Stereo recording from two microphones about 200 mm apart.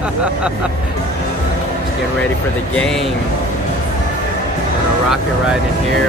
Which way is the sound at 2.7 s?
Centre (ahead or behind).